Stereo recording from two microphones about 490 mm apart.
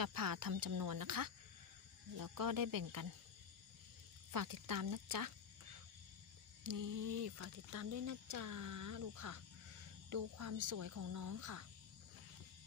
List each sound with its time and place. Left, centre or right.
0.0 s speech: right
4.3 s speech: right
6.6 s speech: right